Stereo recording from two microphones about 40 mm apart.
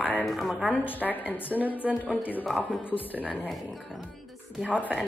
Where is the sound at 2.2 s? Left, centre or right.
Left.